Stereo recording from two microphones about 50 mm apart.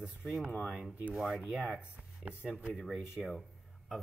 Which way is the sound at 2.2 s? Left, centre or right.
Centre.